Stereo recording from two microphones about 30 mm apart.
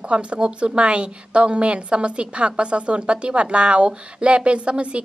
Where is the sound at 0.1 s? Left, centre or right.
Right.